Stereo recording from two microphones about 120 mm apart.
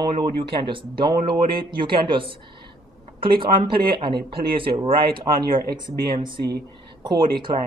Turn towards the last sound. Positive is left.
turn(degrees=-40)  # may be behind; listen again after turning